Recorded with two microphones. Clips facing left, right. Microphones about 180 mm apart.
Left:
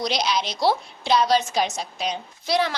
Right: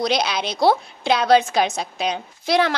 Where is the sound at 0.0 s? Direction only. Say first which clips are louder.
Right 3 dB; 55° right (ahead or behind).